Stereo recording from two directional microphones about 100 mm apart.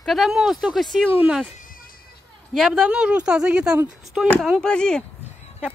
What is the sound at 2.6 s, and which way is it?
Speech, 5° right (ahead or behind).